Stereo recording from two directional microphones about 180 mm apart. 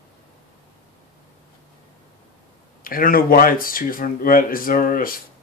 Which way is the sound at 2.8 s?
55° left (ahead or behind).